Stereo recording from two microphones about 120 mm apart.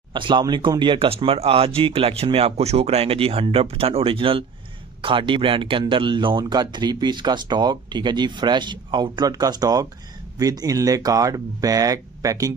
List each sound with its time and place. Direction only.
0.1 s speech: 40° right (ahead or behind)